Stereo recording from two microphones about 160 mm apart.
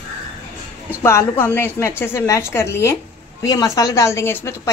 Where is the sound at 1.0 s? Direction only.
15° left (ahead or behind).